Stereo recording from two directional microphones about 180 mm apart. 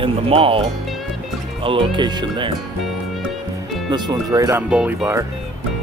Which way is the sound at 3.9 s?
20° right (ahead or behind).